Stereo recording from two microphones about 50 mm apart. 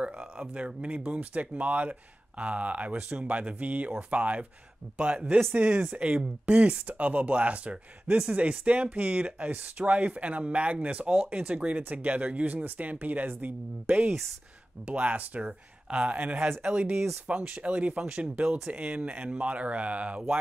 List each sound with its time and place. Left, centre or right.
0.0 s speech: centre